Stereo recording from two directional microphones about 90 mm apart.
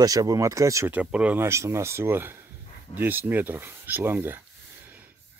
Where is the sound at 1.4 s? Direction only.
30° right (ahead or behind).